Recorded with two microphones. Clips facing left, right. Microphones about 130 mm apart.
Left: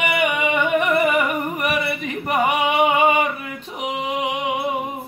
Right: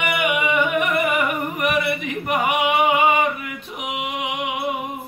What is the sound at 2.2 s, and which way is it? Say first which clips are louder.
Singing: left 1 dB; 35° left (ahead or behind).